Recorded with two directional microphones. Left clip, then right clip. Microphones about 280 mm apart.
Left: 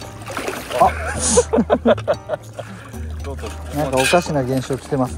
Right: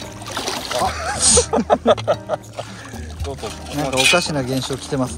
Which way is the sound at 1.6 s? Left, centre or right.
Right.